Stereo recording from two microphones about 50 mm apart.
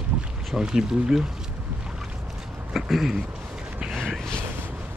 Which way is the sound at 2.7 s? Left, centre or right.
Centre.